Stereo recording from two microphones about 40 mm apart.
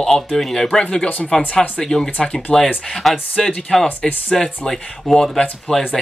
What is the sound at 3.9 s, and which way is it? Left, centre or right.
Speech, left.